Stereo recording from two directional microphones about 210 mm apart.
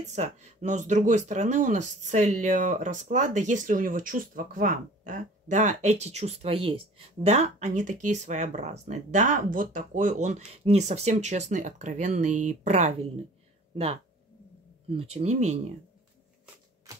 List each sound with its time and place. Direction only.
0.0 s speech: 30° right (ahead or behind)
15.1 s speech: 35° right (ahead or behind)